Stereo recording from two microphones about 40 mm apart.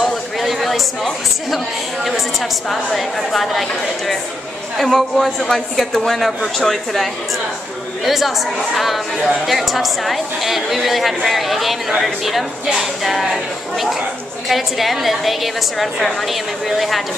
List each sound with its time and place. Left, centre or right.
0.0 s a sound: centre
2.7 s a woman's voice: centre
4.7 s a woman's voice: centre